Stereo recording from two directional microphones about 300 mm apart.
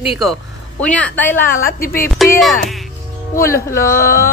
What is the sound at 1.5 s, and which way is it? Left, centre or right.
Speech, left.